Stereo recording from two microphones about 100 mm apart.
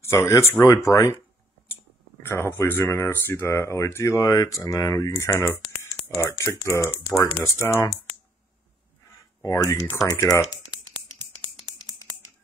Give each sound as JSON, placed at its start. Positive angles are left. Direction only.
{"t": 0.0, "sound": "speech", "side_deg": 25}
{"t": 2.2, "sound": "speech", "side_deg": 25}
{"t": 9.4, "sound": "speech", "side_deg": 35}